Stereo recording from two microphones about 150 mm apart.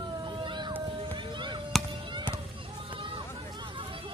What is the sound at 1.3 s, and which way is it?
Chop, 30° right (ahead or behind).